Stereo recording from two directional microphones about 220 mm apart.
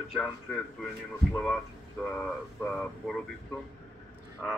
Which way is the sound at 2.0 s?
5° left (ahead or behind).